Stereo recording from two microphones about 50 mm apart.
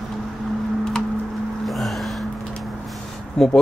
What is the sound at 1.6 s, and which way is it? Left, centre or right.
Gasp, centre.